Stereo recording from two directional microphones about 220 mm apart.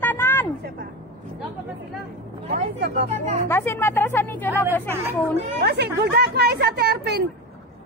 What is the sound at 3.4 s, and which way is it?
A woman's voice, 10° left (ahead or behind).